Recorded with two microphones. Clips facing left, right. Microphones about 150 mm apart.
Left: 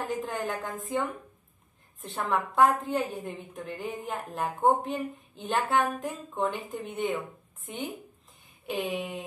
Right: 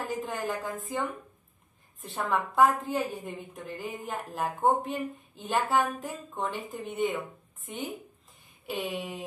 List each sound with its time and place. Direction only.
0.0 s a woman's voice: centre (ahead or behind)
8.6 s a woman's voice: centre (ahead or behind)